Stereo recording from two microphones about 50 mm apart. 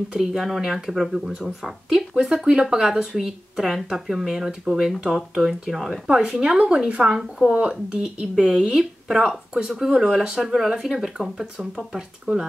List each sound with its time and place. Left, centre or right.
0.2 s speech: centre
6.0 s speech: centre
9.8 s speech: centre